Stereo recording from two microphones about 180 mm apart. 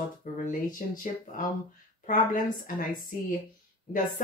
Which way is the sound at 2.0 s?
50° left (ahead or behind).